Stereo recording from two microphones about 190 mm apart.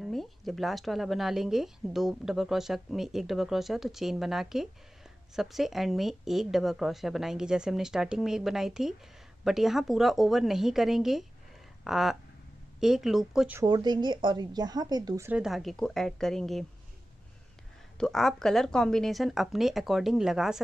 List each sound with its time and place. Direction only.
0.0 s speech: centre (ahead or behind)
11.8 s a sound: centre (ahead or behind)
12.8 s speech: centre (ahead or behind)
13.6 s speech: 20° right (ahead or behind); by 16.6 s centre (ahead or behind)
17.9 s speech: centre (ahead or behind)